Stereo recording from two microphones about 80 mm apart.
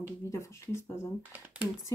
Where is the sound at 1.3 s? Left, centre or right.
Centre.